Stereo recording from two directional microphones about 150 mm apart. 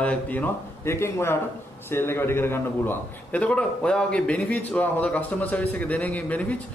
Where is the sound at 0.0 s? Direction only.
10° left (ahead or behind).